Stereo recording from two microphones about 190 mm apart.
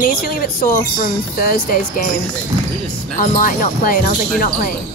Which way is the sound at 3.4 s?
45° left (ahead or behind).